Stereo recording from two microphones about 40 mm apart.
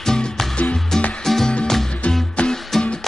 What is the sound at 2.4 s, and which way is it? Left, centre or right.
Music, left.